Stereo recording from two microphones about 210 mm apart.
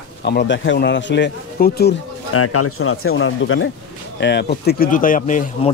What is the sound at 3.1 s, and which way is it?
Speech, 70° left (ahead or behind).